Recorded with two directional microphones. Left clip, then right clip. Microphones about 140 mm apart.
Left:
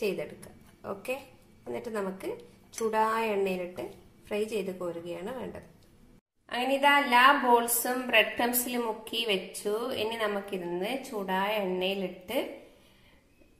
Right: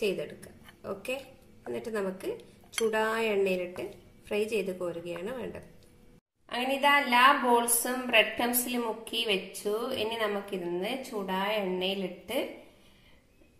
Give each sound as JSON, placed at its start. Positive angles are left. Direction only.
{"t": 0.8, "sound": "a woman's voice", "side_deg": 0}